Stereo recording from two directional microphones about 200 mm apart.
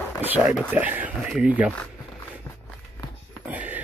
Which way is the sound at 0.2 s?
10° right (ahead or behind).